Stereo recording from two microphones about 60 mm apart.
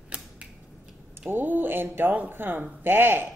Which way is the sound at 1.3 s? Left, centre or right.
Right.